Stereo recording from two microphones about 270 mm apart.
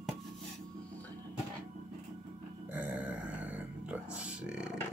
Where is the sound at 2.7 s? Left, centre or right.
Centre.